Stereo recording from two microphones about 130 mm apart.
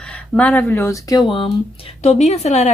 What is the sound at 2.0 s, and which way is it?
Speech, 55° left (ahead or behind).